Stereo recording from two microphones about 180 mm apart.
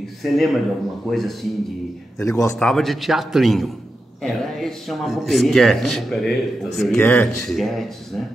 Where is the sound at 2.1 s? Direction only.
15° left (ahead or behind).